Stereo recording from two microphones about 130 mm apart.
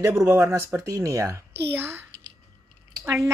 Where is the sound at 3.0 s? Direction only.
20° right (ahead or behind).